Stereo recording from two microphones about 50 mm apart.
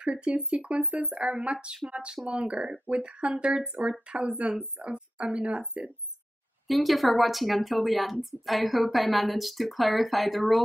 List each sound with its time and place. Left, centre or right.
0.0 s speech: right
6.7 s a woman's voice: centre